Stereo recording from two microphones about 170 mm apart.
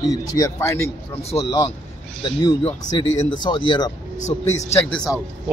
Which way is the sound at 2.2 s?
25° left (ahead or behind).